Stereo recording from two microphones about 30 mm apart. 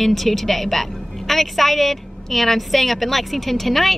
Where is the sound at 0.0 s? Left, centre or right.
Centre.